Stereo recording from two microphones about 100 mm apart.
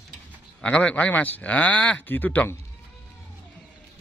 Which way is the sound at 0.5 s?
10° left (ahead or behind).